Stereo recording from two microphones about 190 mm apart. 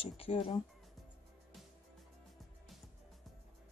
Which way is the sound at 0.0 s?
30° left (ahead or behind).